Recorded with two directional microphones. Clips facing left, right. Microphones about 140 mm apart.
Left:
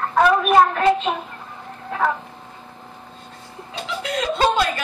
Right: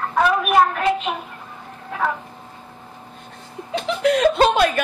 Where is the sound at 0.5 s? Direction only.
10° right (ahead or behind).